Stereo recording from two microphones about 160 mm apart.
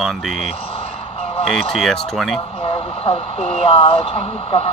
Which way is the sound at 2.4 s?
35° left (ahead or behind).